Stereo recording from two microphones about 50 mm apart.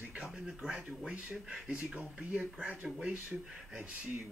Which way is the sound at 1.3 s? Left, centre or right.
Centre.